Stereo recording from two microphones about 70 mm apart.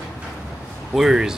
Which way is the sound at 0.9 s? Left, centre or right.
Centre.